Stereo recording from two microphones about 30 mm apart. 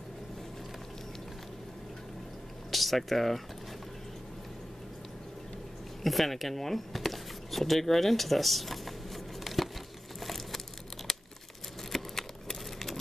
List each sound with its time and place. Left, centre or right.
2.7 s speech: centre
6.0 s speech: centre
7.1 s a sound: centre
10.2 s crushing: centre
11.1 s crumpling: centre
11.9 s a sound: centre